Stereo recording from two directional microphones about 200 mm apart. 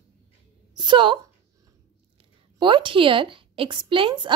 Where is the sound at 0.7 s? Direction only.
25° right (ahead or behind).